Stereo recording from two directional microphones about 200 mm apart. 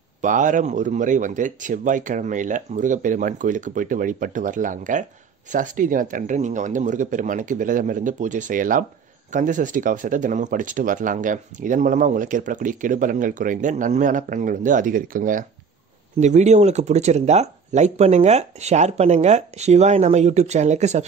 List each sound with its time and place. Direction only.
0.2 s speech: 40° right (ahead or behind)